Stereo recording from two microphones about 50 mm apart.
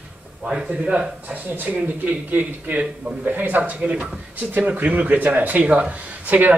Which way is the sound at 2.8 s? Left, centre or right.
Centre.